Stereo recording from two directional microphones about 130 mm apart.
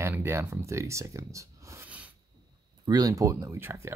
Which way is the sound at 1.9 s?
10° right (ahead or behind).